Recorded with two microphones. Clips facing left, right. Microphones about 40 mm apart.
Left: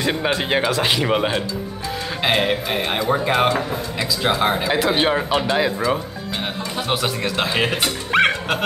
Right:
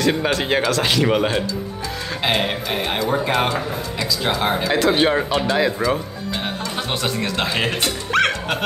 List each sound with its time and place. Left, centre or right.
0.1 s speech: centre
8.1 s goat: centre